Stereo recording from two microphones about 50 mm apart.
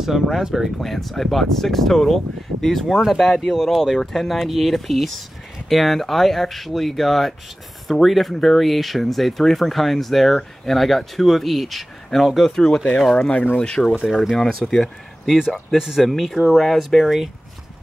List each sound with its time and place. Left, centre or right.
0.0 s speech: centre
0.7 s speech: centre
13.3 s speech: left
13.6 s speech: left
14.0 s speech: centre
14.3 s speech: centre
15.2 s speech: centre